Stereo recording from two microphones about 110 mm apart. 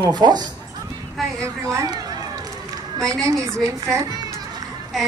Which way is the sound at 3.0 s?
30° right (ahead or behind).